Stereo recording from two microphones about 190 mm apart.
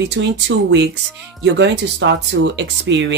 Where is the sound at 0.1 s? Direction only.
70° right (ahead or behind).